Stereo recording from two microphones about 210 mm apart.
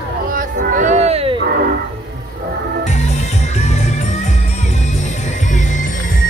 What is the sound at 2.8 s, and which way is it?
Music, 35° left (ahead or behind).